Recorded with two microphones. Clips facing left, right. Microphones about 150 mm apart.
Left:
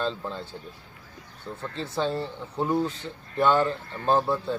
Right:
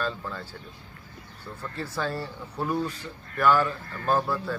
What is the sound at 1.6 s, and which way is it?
Speech, 25° left (ahead or behind).